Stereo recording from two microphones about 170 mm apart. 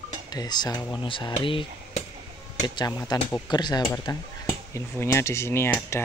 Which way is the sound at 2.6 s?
20° left (ahead or behind).